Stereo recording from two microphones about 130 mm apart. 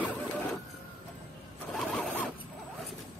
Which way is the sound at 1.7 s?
10° left (ahead or behind).